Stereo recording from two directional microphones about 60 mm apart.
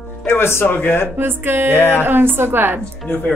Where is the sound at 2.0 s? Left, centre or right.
Right.